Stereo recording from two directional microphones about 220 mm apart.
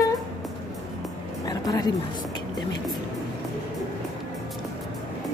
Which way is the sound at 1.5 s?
15° left (ahead or behind).